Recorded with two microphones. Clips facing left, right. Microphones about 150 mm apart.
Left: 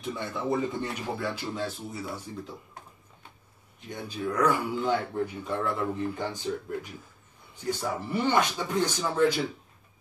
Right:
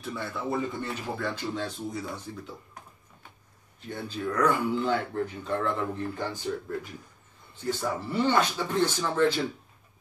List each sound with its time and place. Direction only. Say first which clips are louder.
0.0 s a man's voice: left 1 dB; 20° left (ahead or behind)
1.2 s speech: right 1 dB; 10° left (ahead or behind)
3.9 s speech: even; 10° left (ahead or behind)